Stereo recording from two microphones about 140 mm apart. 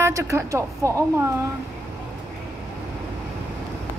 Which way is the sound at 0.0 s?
20° right (ahead or behind).